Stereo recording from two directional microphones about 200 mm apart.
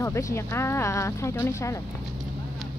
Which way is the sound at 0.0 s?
15° left (ahead or behind).